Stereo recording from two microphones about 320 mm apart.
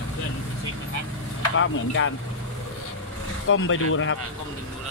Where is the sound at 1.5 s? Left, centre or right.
Left.